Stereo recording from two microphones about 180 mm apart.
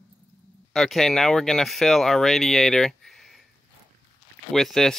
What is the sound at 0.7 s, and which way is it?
Speech, centre (ahead or behind).